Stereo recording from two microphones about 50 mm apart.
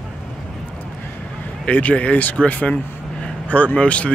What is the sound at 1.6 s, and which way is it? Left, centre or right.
Speech, left.